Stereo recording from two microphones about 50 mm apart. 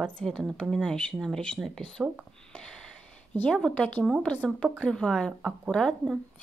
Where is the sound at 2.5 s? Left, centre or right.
Centre.